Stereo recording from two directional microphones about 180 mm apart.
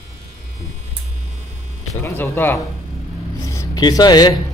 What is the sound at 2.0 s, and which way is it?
Speech, 15° left (ahead or behind).